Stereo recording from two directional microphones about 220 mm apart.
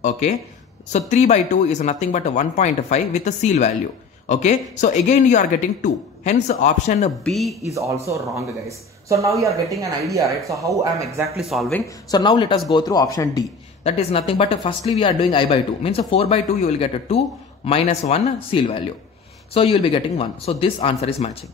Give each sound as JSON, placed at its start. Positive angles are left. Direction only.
{"t": 0.8, "sound": "speech", "side_deg": 30}
{"t": 7.2, "sound": "speech", "side_deg": 0}
{"t": 8.0, "sound": "speech", "side_deg": -15}
{"t": 11.3, "sound": "speech", "side_deg": 0}
{"t": 12.1, "sound": "speech", "side_deg": 20}